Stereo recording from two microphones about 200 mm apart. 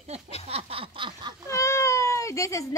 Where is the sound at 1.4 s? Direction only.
15° left (ahead or behind).